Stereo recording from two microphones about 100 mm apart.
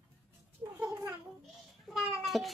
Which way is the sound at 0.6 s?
25° right (ahead or behind).